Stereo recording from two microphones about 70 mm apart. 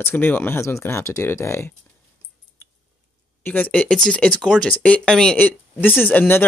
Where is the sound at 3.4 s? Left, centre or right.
Left; by 5.4 s centre.